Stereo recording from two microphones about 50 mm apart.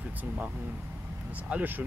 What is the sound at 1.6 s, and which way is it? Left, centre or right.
Speech, right.